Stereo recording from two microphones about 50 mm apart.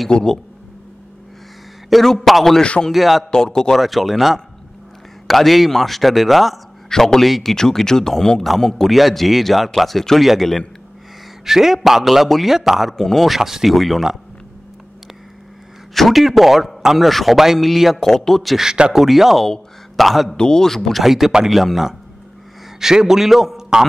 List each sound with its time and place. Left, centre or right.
0.1 s speech: centre
1.9 s a man's voice: centre
2.6 s a man's voice: left
2.9 s a man's voice: centre
3.3 s speech: centre
3.7 s a man's voice: centre
12.9 s speech: centre
13.3 s a man's voice: centre
15.9 s a man's voice: centre
18.6 s a man's voice: centre
19.4 s a sound: centre
20.3 s a man's voice: centre